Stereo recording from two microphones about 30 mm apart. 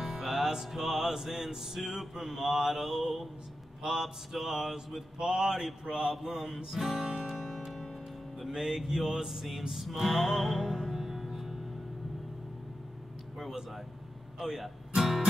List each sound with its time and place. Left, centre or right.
0.0 s music: centre
0.8 s male singing: centre
5.2 s speech: centre
6.2 s male singing: centre
7.3 s music: centre
8.5 s male singing: centre
9.0 s speech: right
9.3 s male singing: centre
10.7 s music: centre
13.4 s a sound: centre
14.6 s music: centre